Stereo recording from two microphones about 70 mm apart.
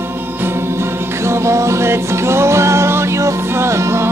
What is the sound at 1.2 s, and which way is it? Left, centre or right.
Music, right.